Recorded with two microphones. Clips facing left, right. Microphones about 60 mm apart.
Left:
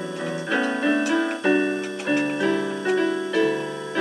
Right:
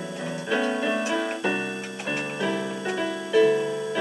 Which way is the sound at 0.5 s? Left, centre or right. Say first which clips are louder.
Left 2 dB; centre.